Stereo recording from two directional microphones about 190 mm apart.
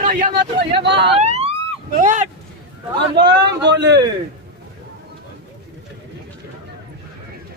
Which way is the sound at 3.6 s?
65° right (ahead or behind).